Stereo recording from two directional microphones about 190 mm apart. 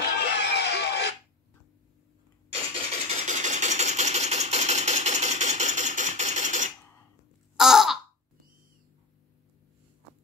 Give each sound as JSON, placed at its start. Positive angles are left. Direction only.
{"t": 0.0, "sound": "a sound", "side_deg": 60}
{"t": 2.7, "sound": "engine", "side_deg": -35}
{"t": 7.5, "sound": "caw", "side_deg": 0}